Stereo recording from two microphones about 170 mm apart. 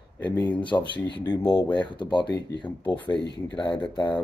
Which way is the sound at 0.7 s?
10° left (ahead or behind).